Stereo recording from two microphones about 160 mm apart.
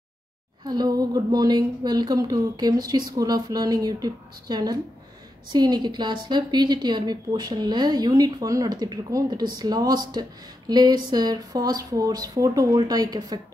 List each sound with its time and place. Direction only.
0.7 s a woman's voice: 25° right (ahead or behind)